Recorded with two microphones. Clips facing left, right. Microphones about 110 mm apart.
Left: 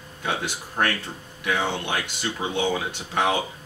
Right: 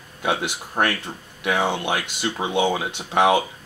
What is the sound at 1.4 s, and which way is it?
Speech, 15° right (ahead or behind).